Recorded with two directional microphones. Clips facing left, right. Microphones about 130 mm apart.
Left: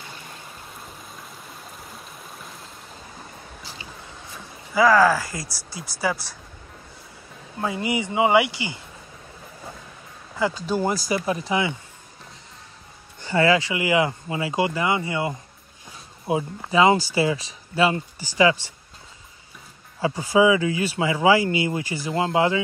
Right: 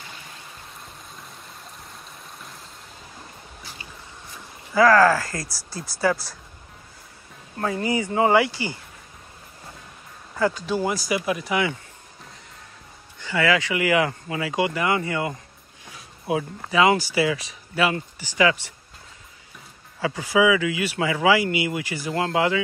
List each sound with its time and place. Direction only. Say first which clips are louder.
1.1 s stream: left 2 dB; centre (ahead or behind)
4.7 s speech: right 1 dB; 10° left (ahead or behind)
7.6 s speech: right 1 dB; 15° left (ahead or behind)
11.2 s speech: even; 30° left (ahead or behind)
13.2 s speech: left 3 dB; 35° left (ahead or behind)
20.0 s speech: left 2 dB; 30° left (ahead or behind)